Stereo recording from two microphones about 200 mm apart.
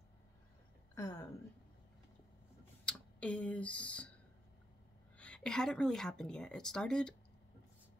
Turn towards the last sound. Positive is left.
turn(degrees=5)  # may be behind; listen again after turning